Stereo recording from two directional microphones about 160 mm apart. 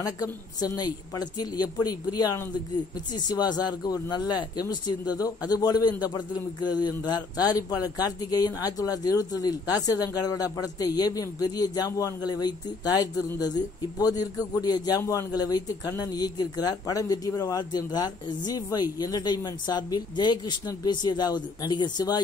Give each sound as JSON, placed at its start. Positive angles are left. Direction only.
{"t": 0.0, "sound": "speech", "side_deg": 20}